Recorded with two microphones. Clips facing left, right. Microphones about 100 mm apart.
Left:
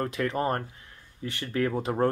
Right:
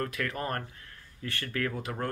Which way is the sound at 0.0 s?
25° left (ahead or behind).